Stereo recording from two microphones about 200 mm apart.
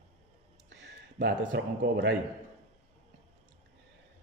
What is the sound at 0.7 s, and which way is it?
A man's voice, 60° right (ahead or behind).